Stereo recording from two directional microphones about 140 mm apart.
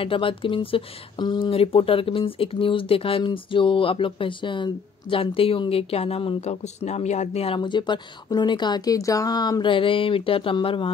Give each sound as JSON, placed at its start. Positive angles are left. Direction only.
{"t": 0.0, "sound": "speech", "side_deg": 40}